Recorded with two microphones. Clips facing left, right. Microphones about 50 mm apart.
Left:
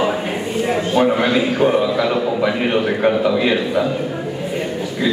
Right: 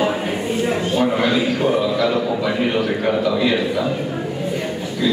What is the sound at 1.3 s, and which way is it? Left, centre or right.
A man's voice, left.